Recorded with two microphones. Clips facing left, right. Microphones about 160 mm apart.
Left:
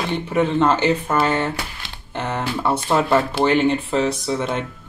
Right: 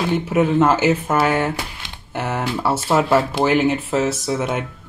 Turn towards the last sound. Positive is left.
turn(degrees=-5)  # may be behind; listen again after turning